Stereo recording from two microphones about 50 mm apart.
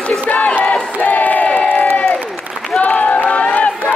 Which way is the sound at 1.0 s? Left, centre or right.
Left.